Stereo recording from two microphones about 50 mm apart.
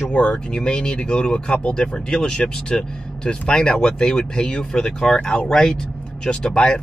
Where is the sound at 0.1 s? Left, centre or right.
Centre.